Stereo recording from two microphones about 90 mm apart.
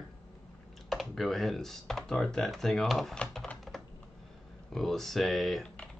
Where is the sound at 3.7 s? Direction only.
5° left (ahead or behind).